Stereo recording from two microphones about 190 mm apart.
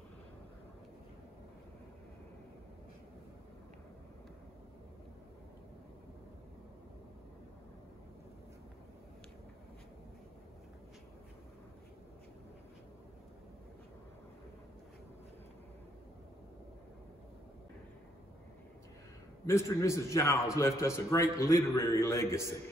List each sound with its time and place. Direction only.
19.4 s a man's voice: 15° left (ahead or behind)